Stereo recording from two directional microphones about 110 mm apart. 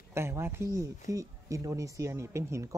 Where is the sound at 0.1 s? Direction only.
25° right (ahead or behind).